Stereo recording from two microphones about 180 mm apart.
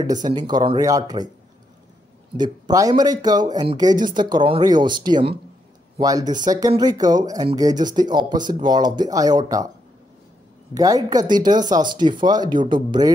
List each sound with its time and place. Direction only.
0.0 s speech: 20° right (ahead or behind)
2.3 s speech: 25° right (ahead or behind)
10.7 s speech: 20° right (ahead or behind)